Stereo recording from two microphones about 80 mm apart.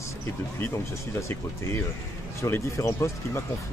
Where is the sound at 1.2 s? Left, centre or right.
Left.